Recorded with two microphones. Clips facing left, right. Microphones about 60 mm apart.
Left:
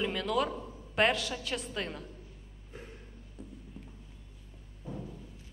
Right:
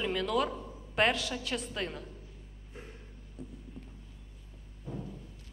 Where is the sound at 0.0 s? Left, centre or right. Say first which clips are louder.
Even; centre.